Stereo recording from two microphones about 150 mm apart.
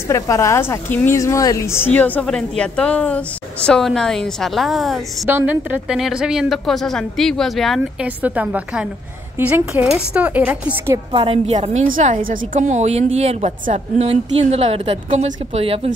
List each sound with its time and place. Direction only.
0.1 s a woman's voice: 20° left (ahead or behind); by 5.0 s centre (ahead or behind)
5.2 s a woman's voice: 15° right (ahead or behind)
8.2 s speech: 10° right (ahead or behind)
11.1 s a woman's voice: 35° right (ahead or behind)
12.0 s a woman's voice: 65° right (ahead or behind); by 15.9 s 40° right (ahead or behind)